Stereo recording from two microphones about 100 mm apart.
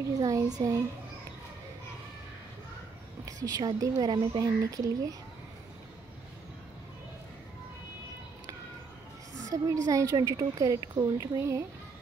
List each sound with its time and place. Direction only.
0.2 s a woman's voice: 35° right (ahead or behind)
3.3 s a woman's voice: 40° right (ahead or behind)
9.5 s a woman's voice: 35° right (ahead or behind)